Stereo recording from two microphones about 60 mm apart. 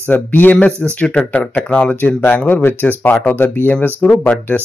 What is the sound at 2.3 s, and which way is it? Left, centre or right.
Speech, left.